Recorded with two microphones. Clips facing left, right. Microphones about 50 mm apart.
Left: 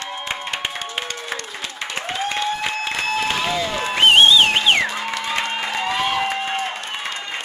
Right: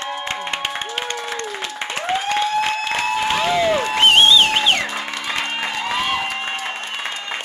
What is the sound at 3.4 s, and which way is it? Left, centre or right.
Applause, centre.